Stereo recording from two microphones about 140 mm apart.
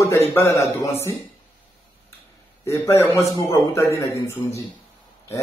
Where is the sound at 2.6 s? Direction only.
20° left (ahead or behind).